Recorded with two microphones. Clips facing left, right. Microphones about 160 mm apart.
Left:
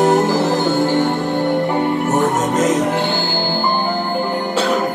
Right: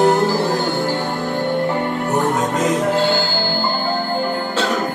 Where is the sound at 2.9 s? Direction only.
20° left (ahead or behind).